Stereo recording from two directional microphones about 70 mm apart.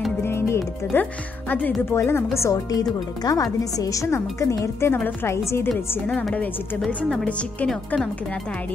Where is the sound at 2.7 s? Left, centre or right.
Left.